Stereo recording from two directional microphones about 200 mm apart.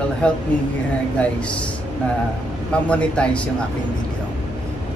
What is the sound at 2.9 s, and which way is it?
Speech, 5° left (ahead or behind).